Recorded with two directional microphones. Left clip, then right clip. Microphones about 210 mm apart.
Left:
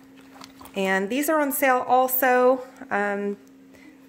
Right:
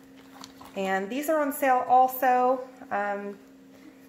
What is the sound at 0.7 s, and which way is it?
Speech, 45° left (ahead or behind).